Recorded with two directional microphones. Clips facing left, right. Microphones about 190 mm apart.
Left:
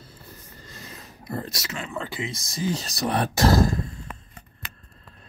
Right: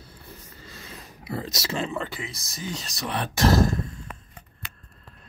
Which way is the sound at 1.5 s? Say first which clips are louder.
Right 6 dB; 30° right (ahead or behind).